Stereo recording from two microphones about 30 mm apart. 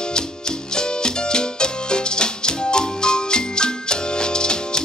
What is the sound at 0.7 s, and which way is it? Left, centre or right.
Music, left.